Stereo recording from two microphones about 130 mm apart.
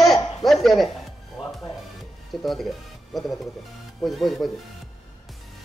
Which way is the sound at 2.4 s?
Centre (ahead or behind).